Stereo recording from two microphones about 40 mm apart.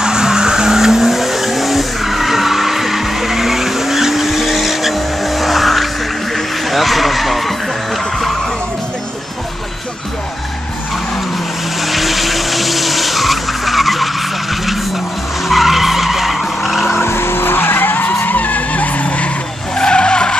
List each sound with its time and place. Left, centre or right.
0.0 s vehicle: centre
11.8 s vehicle: centre
16.9 s vehicle: left
19.7 s vehicle: left